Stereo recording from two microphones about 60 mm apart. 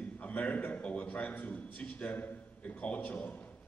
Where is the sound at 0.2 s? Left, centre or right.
Left.